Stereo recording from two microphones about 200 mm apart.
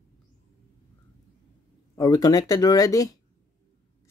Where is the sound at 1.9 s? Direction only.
20° left (ahead or behind).